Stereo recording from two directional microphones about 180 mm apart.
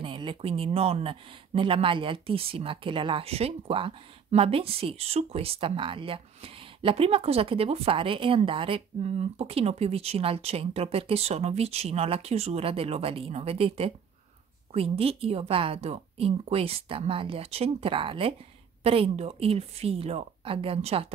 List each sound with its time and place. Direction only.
0.0 s speech: 30° right (ahead or behind)